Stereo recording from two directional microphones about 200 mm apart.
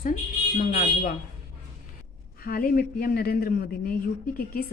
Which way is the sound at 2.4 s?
45° left (ahead or behind).